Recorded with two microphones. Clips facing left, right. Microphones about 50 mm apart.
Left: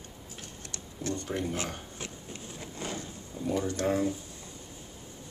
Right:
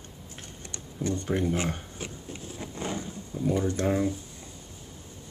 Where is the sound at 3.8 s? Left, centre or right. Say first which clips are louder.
Even; centre.